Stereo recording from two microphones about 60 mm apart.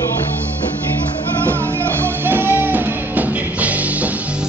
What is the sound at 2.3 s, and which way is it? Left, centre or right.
Music, right.